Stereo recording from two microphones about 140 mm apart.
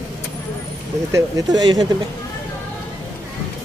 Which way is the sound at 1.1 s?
30° right (ahead or behind).